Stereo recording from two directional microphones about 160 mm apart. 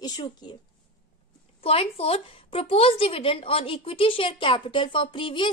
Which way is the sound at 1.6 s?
40° left (ahead or behind).